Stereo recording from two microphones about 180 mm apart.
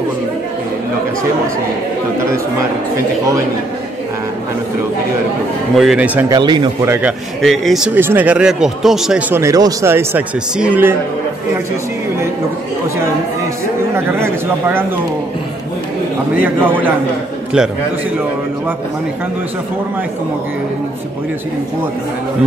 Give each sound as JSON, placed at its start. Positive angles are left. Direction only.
{"t": 5.8, "sound": "speech", "side_deg": -5}
{"t": 6.3, "sound": "speech", "side_deg": -25}
{"t": 6.9, "sound": "speech", "side_deg": -5}
{"t": 9.3, "sound": "speech", "side_deg": -15}
{"t": 13.9, "sound": "speech", "side_deg": -15}
{"t": 16.4, "sound": "speech", "side_deg": -10}